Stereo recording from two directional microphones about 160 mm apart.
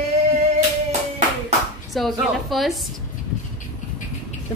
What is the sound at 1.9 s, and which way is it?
Speech, centre (ahead or behind).